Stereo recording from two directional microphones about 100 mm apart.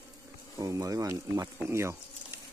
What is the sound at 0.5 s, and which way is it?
Speech, 35° right (ahead or behind).